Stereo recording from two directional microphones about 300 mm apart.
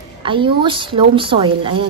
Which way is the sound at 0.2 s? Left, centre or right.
Centre.